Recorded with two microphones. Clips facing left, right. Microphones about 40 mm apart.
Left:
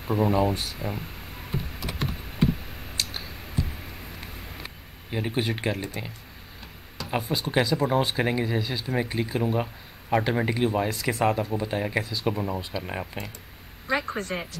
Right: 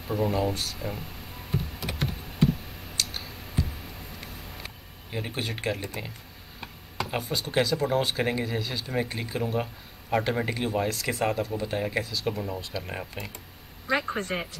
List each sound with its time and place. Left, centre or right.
0.0 s speech: centre
1.8 s computer keyboard: centre
3.0 s clicking: centre
4.6 s speech: centre
13.8 s speech: centre